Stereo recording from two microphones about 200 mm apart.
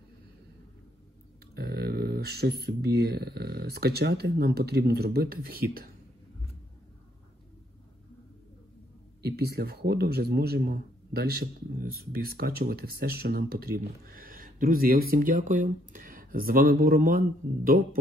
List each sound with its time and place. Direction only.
1.5 s a sound: 50° right (ahead or behind)
2.6 s a man's voice: 50° right (ahead or behind)
9.2 s a man's voice: 50° right (ahead or behind)